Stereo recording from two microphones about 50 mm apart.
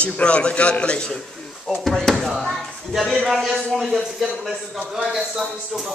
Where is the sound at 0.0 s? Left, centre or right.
Left.